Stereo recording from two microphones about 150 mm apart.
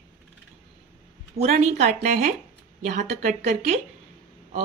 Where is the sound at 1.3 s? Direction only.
45° right (ahead or behind).